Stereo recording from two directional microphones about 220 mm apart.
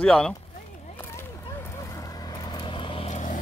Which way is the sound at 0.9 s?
10° left (ahead or behind).